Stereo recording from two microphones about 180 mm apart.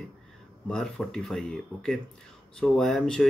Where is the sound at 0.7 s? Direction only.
5° left (ahead or behind).